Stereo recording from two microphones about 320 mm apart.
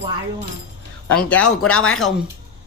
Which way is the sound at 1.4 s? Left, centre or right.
Left.